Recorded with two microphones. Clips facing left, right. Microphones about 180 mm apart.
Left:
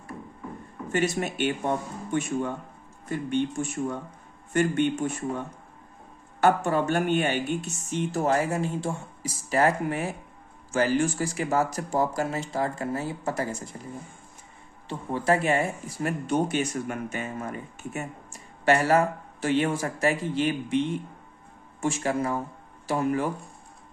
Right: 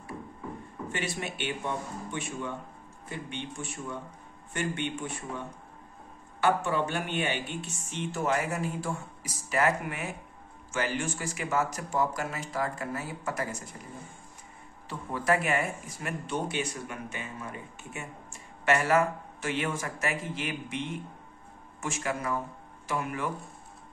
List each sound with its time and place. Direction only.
0.9 s speech: 45° left (ahead or behind)
6.4 s speech: 45° left (ahead or behind); by 13.7 s 30° left (ahead or behind)
14.9 s speech: 25° left (ahead or behind)
21.8 s speech: 30° left (ahead or behind)